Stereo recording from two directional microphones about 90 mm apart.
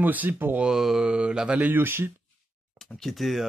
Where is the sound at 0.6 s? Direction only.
5° right (ahead or behind); by 2.1 s 25° right (ahead or behind).